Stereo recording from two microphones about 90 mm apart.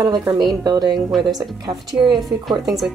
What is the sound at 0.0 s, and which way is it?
Speech, 50° right (ahead or behind).